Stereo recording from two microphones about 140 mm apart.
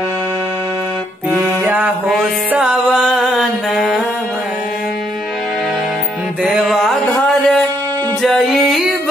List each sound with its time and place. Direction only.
1.6 s mantra: 10° right (ahead or behind)
2.5 s music: 5° right (ahead or behind)
6.4 s music: 5° right (ahead or behind)